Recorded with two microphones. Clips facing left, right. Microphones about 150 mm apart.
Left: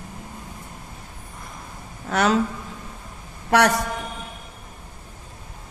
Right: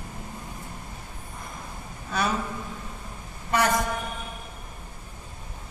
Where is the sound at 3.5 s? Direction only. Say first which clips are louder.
Left 6 dB; 75° left (ahead or behind).